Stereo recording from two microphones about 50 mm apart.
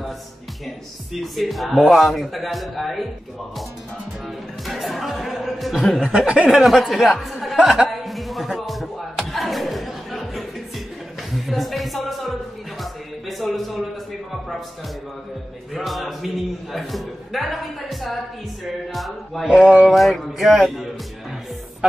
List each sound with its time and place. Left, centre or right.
1.1 s a man's voice: centre
4.6 s a man's voice: centre
6.0 s speech: centre
6.5 s a man's voice: centre
8.0 s music: centre
9.3 s a sound: centre
11.3 s music: centre
13.4 s a sound: centre
15.7 s a man's voice: centre
19.4 s speech: centre
19.9 s a man's voice: centre